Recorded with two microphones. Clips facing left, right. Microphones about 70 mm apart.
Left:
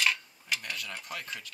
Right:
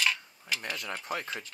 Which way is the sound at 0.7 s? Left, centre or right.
Right.